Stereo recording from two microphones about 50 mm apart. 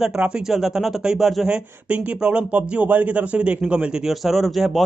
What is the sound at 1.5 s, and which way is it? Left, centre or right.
Speech, right.